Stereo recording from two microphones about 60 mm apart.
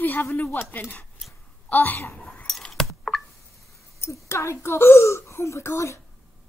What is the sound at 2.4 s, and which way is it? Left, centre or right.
Keys jangling, centre.